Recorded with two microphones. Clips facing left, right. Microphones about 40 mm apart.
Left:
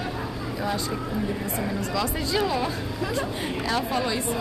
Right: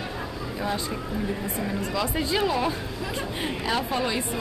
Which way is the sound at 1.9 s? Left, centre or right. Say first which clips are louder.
Right 1 dB; centre.